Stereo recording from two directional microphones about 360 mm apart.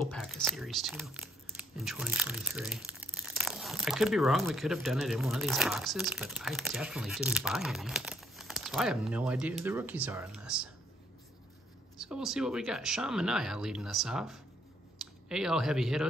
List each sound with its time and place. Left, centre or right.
0.1 s speech: centre
12.0 s speech: centre